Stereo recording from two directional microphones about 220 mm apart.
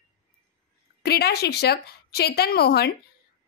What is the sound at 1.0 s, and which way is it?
A woman's voice, 45° left (ahead or behind).